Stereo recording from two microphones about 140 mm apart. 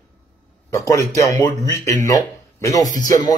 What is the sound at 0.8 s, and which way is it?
Speech, 25° left (ahead or behind).